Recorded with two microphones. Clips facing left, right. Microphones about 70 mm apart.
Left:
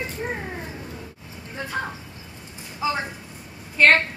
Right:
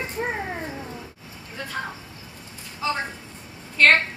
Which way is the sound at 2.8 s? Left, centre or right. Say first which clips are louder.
Left 1 dB; centre.